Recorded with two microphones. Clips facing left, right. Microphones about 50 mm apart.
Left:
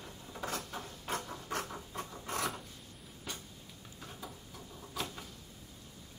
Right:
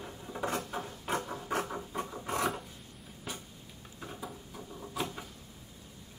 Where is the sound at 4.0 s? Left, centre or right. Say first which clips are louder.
Right 5 dB; centre.